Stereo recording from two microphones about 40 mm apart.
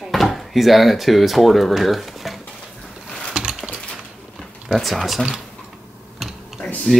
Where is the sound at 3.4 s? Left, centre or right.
Right.